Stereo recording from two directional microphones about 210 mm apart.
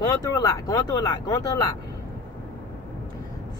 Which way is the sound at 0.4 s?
20° left (ahead or behind).